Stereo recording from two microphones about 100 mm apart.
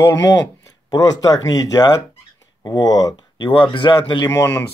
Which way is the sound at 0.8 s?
40° left (ahead or behind).